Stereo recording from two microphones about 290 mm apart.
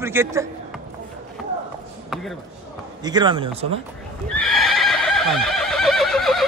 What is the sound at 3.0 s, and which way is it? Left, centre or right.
Speech, centre.